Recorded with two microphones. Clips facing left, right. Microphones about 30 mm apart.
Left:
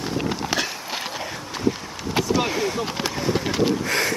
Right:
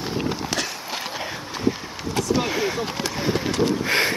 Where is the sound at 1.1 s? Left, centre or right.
Centre.